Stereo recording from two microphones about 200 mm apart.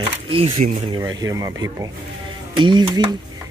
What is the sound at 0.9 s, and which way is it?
A man's voice, 20° right (ahead or behind).